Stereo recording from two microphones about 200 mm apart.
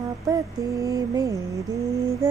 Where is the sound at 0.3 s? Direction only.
15° right (ahead or behind).